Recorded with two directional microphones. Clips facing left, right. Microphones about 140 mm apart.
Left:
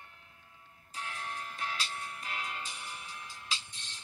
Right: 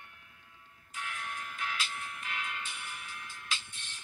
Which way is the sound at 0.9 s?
35° left (ahead or behind).